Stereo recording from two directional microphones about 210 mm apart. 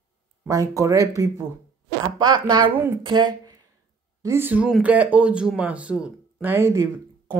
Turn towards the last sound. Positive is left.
turn(degrees=-15)  # may be behind; listen again after turning